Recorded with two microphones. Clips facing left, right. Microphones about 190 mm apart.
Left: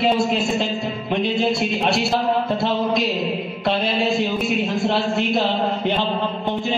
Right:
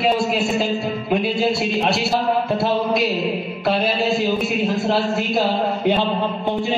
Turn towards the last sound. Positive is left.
turn(degrees=-15)  # may be behind; listen again after turning